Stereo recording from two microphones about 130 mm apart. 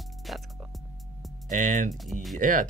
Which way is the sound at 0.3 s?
Centre (ahead or behind).